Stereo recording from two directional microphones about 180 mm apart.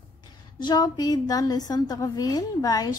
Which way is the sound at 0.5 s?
25° left (ahead or behind).